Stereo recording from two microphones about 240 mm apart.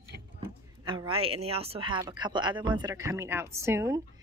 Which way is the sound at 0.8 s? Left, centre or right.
Centre.